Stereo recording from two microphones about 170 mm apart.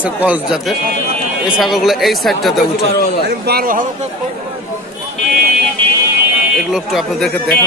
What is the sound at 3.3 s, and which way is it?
Speech, 65° right (ahead or behind).